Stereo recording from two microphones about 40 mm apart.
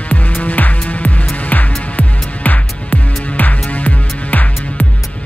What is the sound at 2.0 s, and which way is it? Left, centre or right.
Music, left.